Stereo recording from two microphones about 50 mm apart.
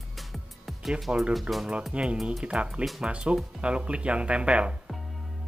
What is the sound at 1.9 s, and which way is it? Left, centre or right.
Speech, right.